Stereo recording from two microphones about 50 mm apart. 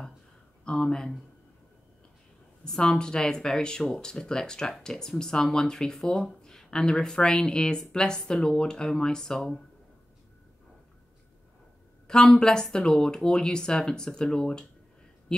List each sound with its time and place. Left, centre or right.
0.7 s speech: centre
2.6 s speech: centre
12.1 s speech: centre